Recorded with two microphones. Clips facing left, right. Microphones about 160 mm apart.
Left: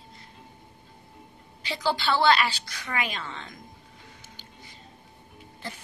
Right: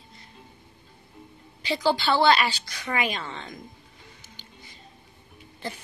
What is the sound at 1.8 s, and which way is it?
Speech, 25° right (ahead or behind).